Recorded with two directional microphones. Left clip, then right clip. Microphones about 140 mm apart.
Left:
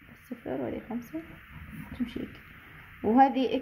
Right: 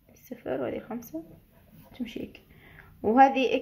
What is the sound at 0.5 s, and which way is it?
Speech, 20° left (ahead or behind).